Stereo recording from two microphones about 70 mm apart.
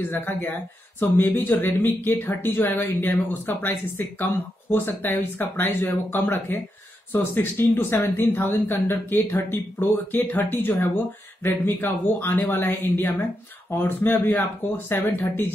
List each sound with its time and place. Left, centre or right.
0.1 s speech: left